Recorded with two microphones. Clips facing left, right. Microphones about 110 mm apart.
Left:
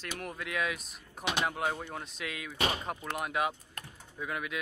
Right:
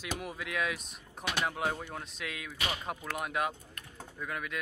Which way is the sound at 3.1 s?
Centre (ahead or behind).